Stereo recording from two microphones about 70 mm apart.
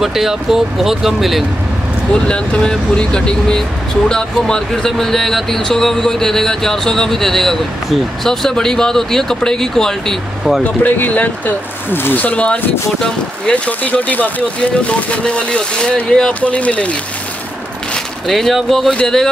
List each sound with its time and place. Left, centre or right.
0.0 s speech: centre
2.2 s speech: centre
10.6 s speech: left
13.7 s speech: left
18.2 s speech: centre